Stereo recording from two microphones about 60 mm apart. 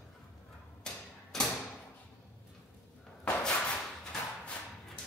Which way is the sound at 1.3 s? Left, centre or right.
Centre.